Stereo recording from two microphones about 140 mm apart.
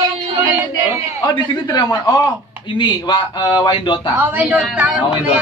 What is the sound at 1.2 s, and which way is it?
A man's voice, 30° left (ahead or behind).